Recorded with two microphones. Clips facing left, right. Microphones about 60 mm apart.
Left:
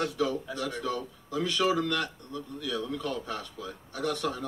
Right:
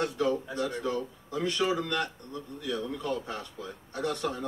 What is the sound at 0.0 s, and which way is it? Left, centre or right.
Speech, right.